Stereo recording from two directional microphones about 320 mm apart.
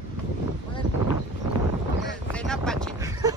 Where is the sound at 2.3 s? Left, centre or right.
Centre.